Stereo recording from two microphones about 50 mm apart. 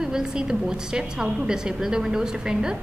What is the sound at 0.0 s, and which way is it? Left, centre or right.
A woman's voice, centre.